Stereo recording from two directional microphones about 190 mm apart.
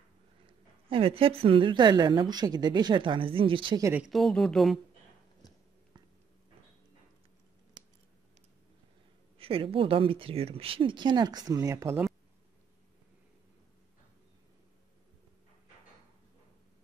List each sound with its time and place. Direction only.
0.5 s a woman's voice: 30° right (ahead or behind)
3.9 s speech: centre (ahead or behind)
5.4 s a sound: 20° left (ahead or behind)
9.4 s a woman's voice: 30° right (ahead or behind)